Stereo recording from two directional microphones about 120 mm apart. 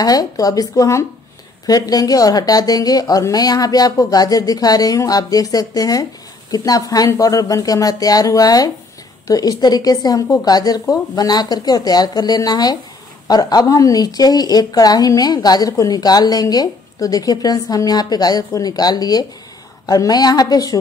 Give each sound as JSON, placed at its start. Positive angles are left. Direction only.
{"t": 0.0, "sound": "a woman's voice", "side_deg": 30}